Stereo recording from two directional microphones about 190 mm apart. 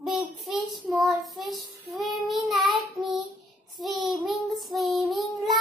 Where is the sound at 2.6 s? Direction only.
25° right (ahead or behind).